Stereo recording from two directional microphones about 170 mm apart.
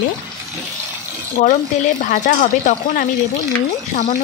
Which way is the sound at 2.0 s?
50° left (ahead or behind).